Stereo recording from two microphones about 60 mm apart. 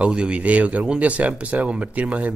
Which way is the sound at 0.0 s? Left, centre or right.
Centre.